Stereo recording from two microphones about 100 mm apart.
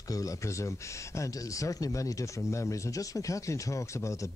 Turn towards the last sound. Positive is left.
turn(degrees=30)  # may be behind; listen again after turning